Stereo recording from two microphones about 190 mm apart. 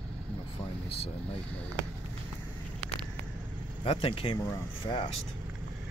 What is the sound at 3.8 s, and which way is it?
Speech, 30° left (ahead or behind).